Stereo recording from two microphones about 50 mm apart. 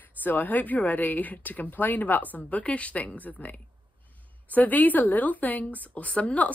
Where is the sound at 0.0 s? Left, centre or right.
Left.